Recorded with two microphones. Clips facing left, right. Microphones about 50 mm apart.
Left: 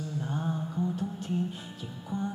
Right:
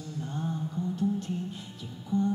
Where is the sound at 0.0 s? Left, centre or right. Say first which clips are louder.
Left 2 dB; centre.